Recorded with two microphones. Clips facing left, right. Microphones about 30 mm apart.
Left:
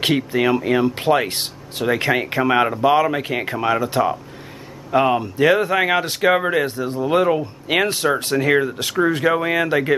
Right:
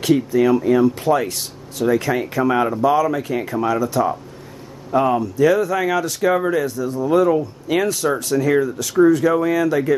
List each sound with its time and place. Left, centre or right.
0.0 s speech: left